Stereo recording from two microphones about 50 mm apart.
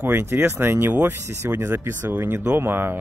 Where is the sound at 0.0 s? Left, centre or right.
Right.